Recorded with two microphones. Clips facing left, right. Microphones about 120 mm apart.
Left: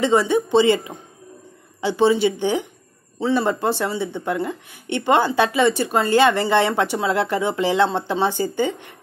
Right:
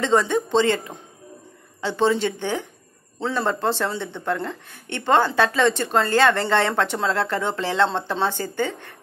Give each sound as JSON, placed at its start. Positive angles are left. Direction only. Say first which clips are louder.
{"t": 0.0, "sound": "speech", "louder": "left 2 dB", "side_deg": 10}